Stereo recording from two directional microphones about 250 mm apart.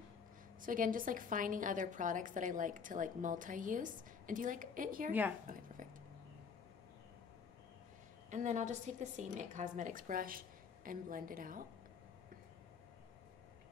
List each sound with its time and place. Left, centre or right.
0.6 s a woman's voice: right
8.3 s a woman's voice: right